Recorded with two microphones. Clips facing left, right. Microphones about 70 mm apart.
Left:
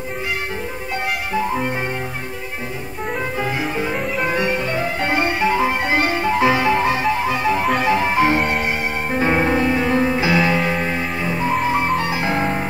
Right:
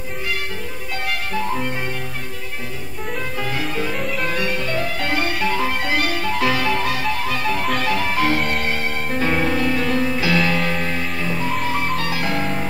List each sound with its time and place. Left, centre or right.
1.3 s music: centre
3.3 s music: left